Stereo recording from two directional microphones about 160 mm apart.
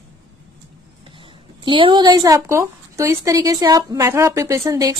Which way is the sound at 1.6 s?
30° right (ahead or behind).